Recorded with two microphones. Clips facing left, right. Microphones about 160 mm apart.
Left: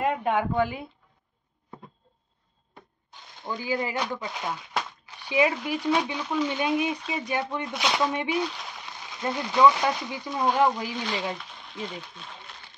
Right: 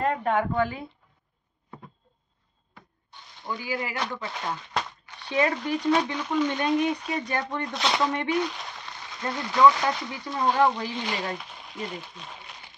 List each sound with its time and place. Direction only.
0.0 s speech: 15° left (ahead or behind)
3.4 s speech: 20° left (ahead or behind)
11.7 s speech: 5° right (ahead or behind)